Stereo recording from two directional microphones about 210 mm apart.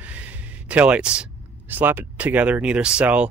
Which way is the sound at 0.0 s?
5° right (ahead or behind).